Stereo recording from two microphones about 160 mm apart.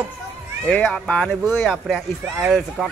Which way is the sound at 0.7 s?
5° left (ahead or behind).